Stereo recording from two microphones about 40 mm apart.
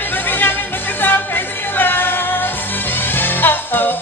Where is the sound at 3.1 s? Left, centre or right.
Left.